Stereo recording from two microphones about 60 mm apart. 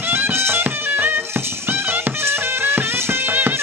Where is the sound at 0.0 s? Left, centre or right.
Right.